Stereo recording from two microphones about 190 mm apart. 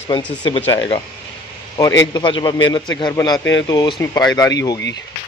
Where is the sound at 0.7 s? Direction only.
25° left (ahead or behind).